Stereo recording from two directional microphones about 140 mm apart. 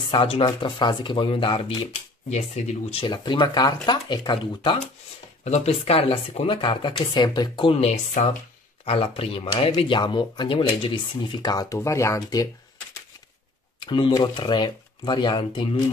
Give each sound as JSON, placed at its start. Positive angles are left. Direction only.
{"t": 0.1, "sound": "speech", "side_deg": 40}
{"t": 2.2, "sound": "speech", "side_deg": 50}
{"t": 3.1, "sound": "speech", "side_deg": 30}
{"t": 5.4, "sound": "speech", "side_deg": 50}
{"t": 8.8, "sound": "speech", "side_deg": 45}
{"t": 13.7, "sound": "speech", "side_deg": 35}